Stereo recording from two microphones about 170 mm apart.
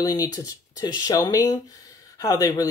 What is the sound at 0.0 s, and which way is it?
Speech, 20° left (ahead or behind).